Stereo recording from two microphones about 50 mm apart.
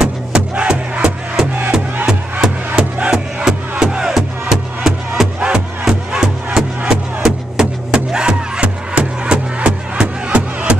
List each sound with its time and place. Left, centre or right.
0.0 s music: centre
2.4 s music: centre